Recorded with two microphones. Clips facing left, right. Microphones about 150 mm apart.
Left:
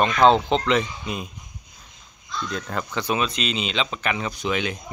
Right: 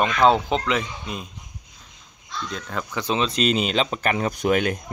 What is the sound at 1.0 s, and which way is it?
Speech, 5° left (ahead or behind).